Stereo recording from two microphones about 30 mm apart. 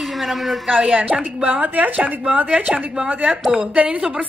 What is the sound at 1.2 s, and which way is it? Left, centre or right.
Speech, right.